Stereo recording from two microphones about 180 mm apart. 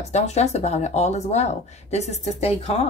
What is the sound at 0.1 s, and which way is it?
A woman's voice, 40° left (ahead or behind).